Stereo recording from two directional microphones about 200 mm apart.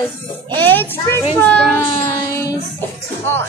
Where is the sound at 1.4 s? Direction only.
5° left (ahead or behind).